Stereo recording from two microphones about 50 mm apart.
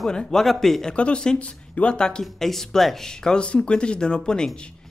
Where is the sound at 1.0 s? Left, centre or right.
Left.